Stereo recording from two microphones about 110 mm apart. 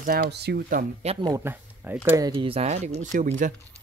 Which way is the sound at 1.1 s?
65° right (ahead or behind).